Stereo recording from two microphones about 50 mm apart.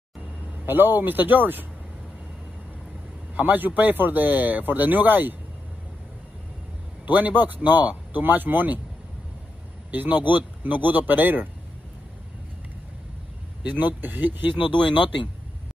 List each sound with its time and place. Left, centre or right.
0.7 s speech: right
3.3 s speech: right
7.1 s speech: right
9.8 s speech: right
13.7 s speech: right